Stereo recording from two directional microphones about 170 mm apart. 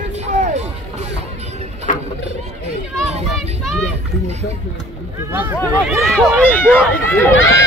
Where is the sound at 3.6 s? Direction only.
5° left (ahead or behind).